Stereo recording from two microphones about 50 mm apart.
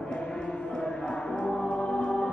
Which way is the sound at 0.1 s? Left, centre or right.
Centre.